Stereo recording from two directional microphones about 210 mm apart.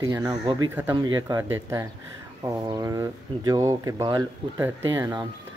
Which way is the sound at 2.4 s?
15° right (ahead or behind).